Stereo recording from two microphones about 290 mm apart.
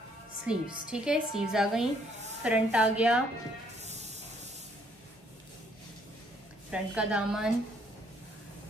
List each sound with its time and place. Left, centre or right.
0.5 s speech: centre
3.8 s hiss: right
6.7 s speech: centre